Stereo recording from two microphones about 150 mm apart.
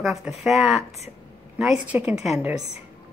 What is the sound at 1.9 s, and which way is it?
Speech, 10° right (ahead or behind).